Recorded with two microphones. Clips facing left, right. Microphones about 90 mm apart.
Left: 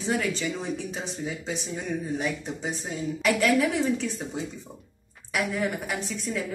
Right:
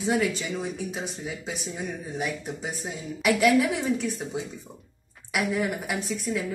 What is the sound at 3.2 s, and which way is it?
Speech, 15° right (ahead or behind).